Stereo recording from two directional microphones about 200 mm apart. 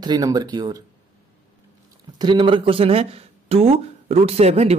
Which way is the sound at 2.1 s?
25° right (ahead or behind).